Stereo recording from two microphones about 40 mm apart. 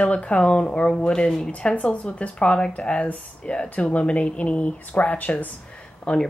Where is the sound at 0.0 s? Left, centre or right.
Left.